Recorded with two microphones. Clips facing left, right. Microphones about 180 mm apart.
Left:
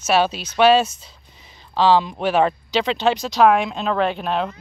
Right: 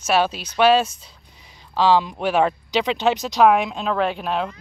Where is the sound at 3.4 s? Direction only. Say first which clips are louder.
Even; 5° right (ahead or behind).